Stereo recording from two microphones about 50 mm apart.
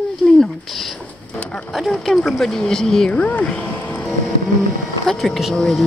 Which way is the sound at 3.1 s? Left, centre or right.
Left.